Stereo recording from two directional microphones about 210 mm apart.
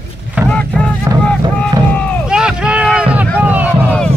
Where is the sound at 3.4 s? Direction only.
10° right (ahead or behind).